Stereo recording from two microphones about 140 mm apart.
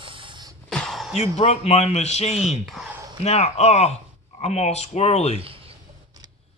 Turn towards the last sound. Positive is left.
turn(degrees=50)  # may be behind; listen again after turning